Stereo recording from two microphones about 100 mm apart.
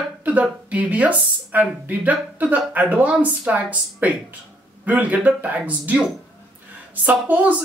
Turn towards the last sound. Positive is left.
turn(degrees=-15)  # may be behind; listen again after turning